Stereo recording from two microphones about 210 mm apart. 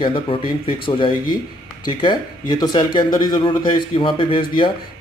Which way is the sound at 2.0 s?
25° left (ahead or behind).